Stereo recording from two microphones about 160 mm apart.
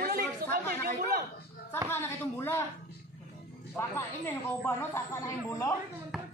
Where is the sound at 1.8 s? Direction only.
15° left (ahead or behind).